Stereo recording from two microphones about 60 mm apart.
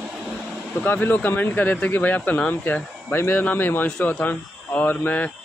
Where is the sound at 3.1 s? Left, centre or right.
Left.